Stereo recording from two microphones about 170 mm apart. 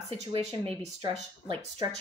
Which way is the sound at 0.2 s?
35° right (ahead or behind).